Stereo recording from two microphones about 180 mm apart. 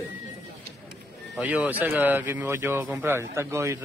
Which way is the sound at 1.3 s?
5° right (ahead or behind).